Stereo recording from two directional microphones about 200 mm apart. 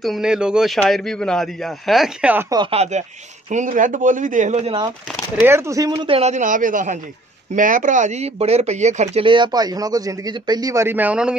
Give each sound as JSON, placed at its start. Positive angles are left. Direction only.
{"t": 0.0, "sound": "speech", "side_deg": 0}
{"t": 2.5, "sound": "speech", "side_deg": -25}
{"t": 5.4, "sound": "speech", "side_deg": -15}